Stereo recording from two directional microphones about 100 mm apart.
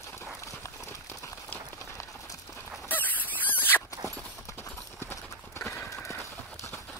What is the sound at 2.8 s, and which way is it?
Squeal, 20° left (ahead or behind).